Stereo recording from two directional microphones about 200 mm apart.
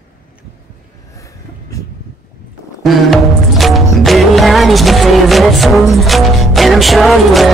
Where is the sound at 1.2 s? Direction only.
15° left (ahead or behind).